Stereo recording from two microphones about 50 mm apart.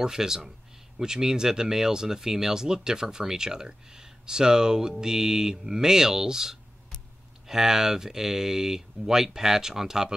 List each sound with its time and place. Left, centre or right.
0.0 s speech: centre